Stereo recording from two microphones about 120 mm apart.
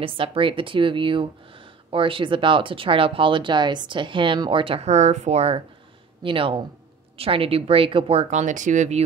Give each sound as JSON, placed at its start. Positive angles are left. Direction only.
{"t": 0.0, "sound": "speech", "side_deg": -50}
{"t": 6.2, "sound": "speech", "side_deg": -50}